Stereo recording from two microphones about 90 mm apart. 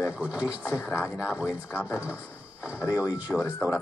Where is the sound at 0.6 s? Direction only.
25° left (ahead or behind).